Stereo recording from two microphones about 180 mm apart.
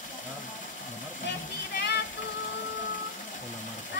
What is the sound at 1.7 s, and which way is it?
Music, 65° left (ahead or behind).